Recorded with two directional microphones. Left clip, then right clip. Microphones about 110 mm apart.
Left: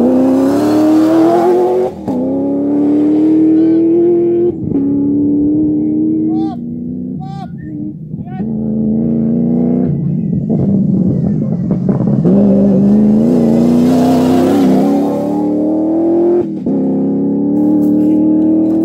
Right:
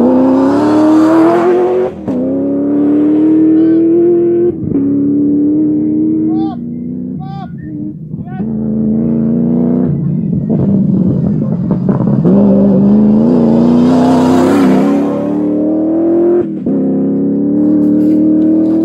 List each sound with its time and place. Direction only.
0.0 s vehicle: centre (ahead or behind); by 3.5 s 15° left (ahead or behind)
3.5 s vehicle: 5° left (ahead or behind)
3.8 s vehicle: 20° left (ahead or behind)
9.0 s music: centre (ahead or behind)
10.5 s vehicle: centre (ahead or behind)
17.9 s music: 20° left (ahead or behind)